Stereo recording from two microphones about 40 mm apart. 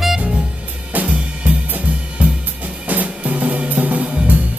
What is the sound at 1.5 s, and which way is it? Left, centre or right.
Drum kit, right.